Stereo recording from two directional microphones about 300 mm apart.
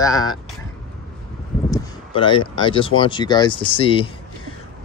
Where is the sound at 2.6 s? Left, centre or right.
Centre.